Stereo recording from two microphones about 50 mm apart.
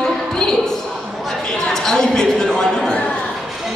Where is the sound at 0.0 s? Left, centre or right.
Centre.